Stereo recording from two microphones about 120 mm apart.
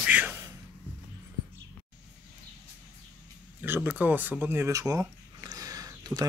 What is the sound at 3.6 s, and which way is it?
Speech, 15° right (ahead or behind).